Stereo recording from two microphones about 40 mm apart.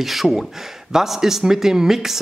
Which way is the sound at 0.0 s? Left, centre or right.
Centre.